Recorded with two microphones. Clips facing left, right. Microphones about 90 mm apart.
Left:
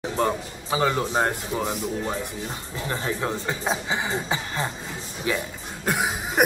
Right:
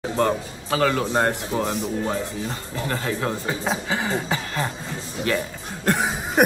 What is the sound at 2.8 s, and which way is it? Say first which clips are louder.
Speech: right 2 dB; 20° left (ahead or behind).